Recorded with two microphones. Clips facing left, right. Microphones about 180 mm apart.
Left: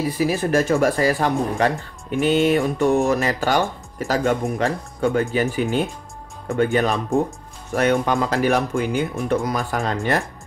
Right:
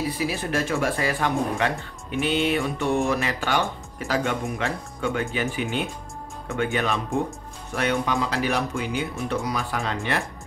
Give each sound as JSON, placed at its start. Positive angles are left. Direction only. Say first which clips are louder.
{"t": 0.2, "sound": "speech", "louder": "left 7 dB", "side_deg": 45}